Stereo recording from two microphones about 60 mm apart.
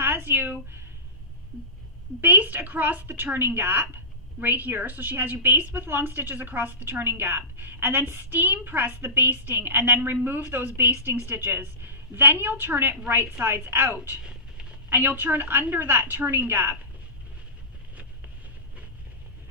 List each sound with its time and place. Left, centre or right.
0.0 s speech: right
2.2 s a woman's voice: right
14.2 s a sound: centre
14.9 s a woman's voice: right